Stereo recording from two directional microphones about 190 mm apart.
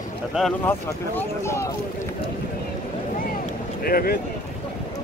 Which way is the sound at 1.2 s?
15° left (ahead or behind).